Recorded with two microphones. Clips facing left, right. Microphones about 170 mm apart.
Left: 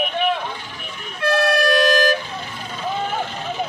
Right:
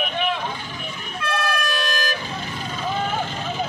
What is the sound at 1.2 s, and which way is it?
Vehicle, 70° left (ahead or behind).